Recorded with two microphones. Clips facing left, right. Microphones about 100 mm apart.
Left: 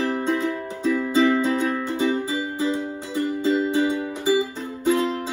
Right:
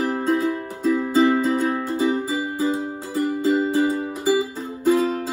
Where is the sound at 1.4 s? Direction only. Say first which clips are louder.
Right 1 dB; 5° right (ahead or behind).